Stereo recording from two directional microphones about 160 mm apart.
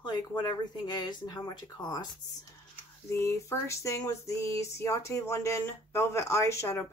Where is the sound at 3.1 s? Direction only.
15° left (ahead or behind).